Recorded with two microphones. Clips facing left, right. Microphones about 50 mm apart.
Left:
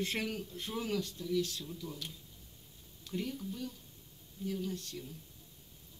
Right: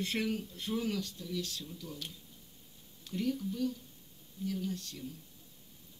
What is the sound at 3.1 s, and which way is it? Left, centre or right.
A woman's voice, left.